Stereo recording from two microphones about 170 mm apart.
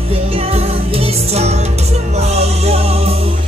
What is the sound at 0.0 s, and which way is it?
Music, 35° right (ahead or behind).